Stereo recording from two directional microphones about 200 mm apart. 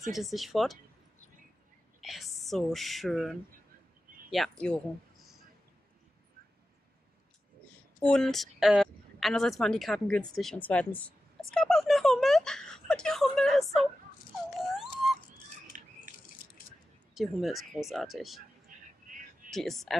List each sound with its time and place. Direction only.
0.0 s speech: centre (ahead or behind)
2.0 s speech: centre (ahead or behind)
8.0 s a woman's voice: 5° left (ahead or behind)
14.6 s a sound: centre (ahead or behind)
15.7 s drip: 40° right (ahead or behind)
17.1 s speech: centre (ahead or behind)
19.5 s speech: centre (ahead or behind)